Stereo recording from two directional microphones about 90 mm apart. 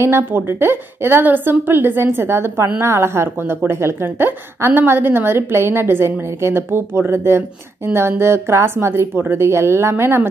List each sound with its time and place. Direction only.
0.0 s a woman's voice: 25° right (ahead or behind)